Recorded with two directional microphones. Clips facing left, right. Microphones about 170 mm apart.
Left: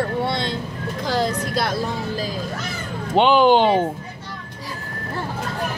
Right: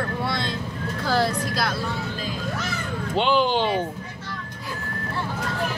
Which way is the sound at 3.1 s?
60° left (ahead or behind).